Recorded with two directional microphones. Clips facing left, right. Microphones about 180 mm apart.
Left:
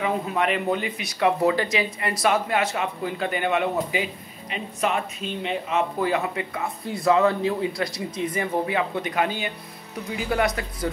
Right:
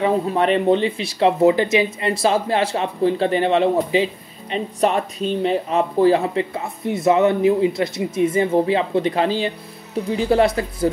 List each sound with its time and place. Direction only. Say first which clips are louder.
0.0 s speech: right 6 dB; 30° right (ahead or behind)